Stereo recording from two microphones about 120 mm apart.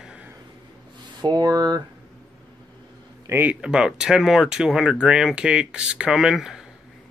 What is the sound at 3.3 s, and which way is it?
Speech, 15° right (ahead or behind).